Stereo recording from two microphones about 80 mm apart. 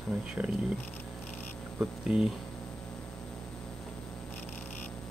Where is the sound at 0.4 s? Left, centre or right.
Right.